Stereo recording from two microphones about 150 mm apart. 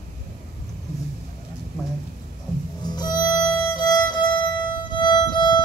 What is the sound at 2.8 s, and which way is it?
Violin, 30° left (ahead or behind).